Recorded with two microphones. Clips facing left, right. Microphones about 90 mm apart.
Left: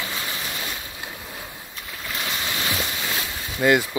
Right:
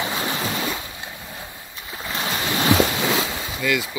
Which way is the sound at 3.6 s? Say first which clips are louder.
Left 5 dB; 45° left (ahead or behind).